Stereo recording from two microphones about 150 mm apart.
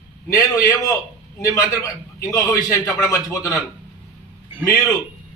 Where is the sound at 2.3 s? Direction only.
20° left (ahead or behind).